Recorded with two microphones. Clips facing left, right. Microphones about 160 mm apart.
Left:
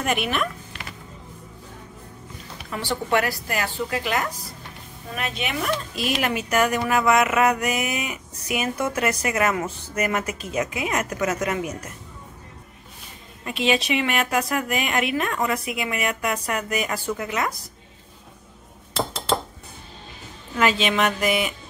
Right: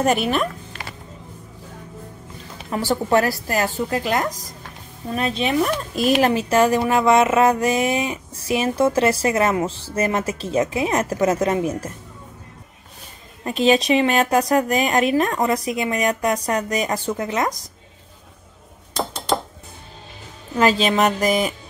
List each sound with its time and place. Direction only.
0.0 s speech: 35° right (ahead or behind)
2.7 s speech: 40° right (ahead or behind)
6.2 s mantra: 30° right (ahead or behind)
9.9 s speech: 30° right (ahead or behind)
13.4 s speech: 40° right (ahead or behind)
20.5 s speech: 35° right (ahead or behind)